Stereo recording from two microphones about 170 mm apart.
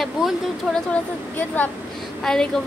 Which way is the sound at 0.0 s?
Centre (ahead or behind).